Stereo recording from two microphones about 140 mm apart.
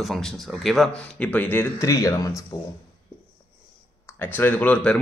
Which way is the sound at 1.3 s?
10° left (ahead or behind).